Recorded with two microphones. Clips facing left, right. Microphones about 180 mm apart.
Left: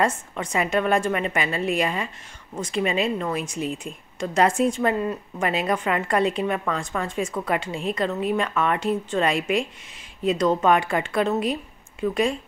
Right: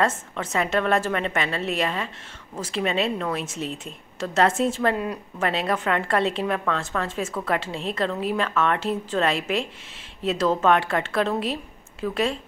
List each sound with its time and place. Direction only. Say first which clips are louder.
0.0 s a woman's voice: left 1 dB; centre (ahead or behind)